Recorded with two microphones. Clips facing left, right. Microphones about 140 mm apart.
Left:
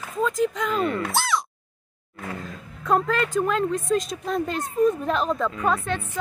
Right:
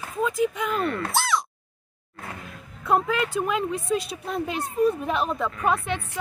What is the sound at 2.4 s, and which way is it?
A woman's voice, 10° right (ahead or behind).